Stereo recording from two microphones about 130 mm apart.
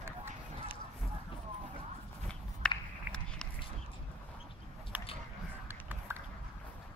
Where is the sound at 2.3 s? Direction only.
5° left (ahead or behind).